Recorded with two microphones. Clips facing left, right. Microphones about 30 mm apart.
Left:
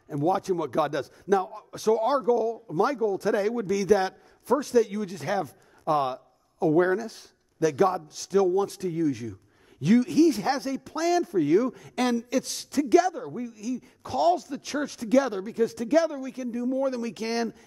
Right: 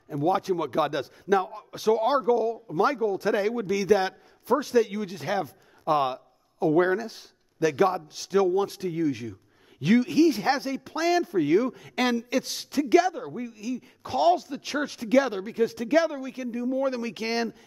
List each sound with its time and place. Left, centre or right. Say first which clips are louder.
0.1 s a man's voice: even; centre